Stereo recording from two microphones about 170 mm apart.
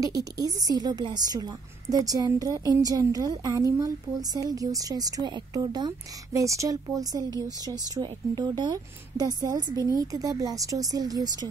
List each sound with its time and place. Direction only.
0.0 s a woman's voice: 20° right (ahead or behind)